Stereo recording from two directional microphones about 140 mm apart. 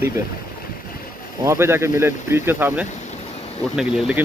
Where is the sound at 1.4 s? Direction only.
20° right (ahead or behind).